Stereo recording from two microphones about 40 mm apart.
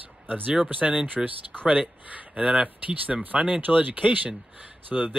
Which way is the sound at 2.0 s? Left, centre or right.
Right.